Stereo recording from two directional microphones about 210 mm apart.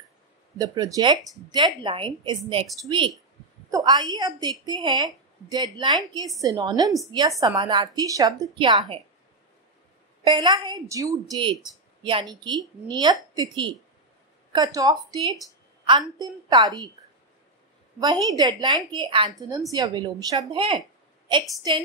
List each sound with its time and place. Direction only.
0.6 s a woman's voice: 15° right (ahead or behind)
10.2 s a woman's voice: 20° right (ahead or behind)
18.0 s a woman's voice: 15° right (ahead or behind)